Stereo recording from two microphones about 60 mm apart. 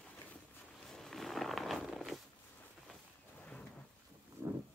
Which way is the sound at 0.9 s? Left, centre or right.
Centre.